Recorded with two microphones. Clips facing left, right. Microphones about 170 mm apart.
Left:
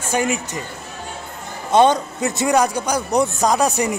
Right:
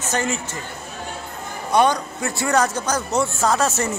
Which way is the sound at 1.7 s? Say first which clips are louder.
Left 4 dB; 25° left (ahead or behind).